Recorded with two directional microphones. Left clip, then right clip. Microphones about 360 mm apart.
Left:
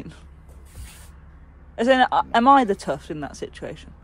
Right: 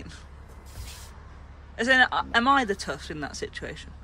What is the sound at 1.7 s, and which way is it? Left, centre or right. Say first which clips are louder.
Speech: left 3 dB; centre.